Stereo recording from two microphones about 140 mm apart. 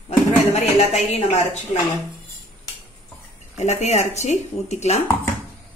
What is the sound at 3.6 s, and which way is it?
A woman's voice, 55° left (ahead or behind).